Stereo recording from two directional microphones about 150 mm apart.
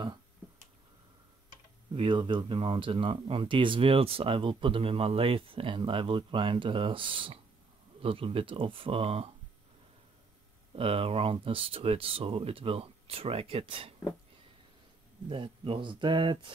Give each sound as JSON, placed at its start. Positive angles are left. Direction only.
{"t": 2.0, "sound": "speech", "side_deg": -35}
{"t": 10.8, "sound": "speech", "side_deg": -40}
{"t": 15.2, "sound": "speech", "side_deg": -35}